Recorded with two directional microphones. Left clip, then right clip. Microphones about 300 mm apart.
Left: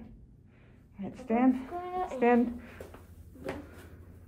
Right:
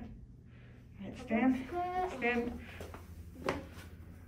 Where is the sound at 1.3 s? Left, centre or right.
Centre.